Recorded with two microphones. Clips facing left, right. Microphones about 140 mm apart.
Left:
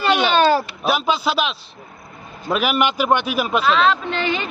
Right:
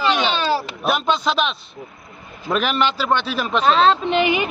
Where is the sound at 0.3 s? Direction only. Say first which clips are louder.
Left 5 dB; 50° left (ahead or behind).